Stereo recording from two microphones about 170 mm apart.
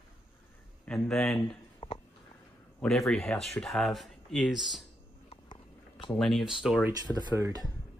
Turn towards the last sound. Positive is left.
turn(degrees=-20)  # may be behind; listen again after turning